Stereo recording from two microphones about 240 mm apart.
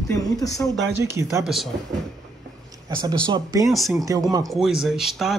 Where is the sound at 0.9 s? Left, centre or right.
Centre.